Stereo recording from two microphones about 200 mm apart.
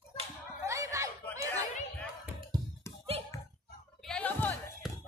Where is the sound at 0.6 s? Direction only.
15° right (ahead or behind).